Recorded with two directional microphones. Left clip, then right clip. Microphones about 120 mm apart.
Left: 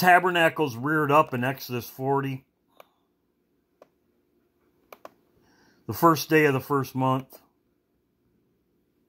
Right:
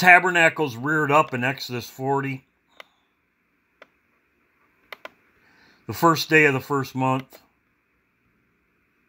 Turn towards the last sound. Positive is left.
turn(degrees=0)  # may be behind; listen again after turning